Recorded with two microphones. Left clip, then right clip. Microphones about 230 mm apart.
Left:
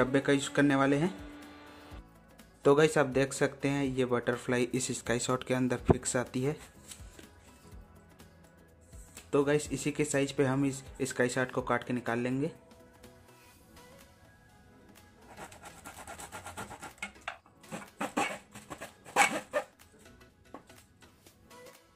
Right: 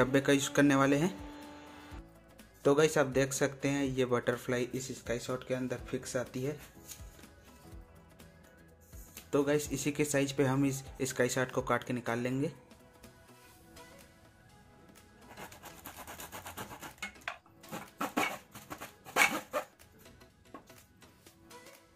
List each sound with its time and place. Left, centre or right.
0.0 s speech: centre
2.6 s speech: centre
4.7 s speech: left
9.3 s speech: centre
18.8 s a sound: centre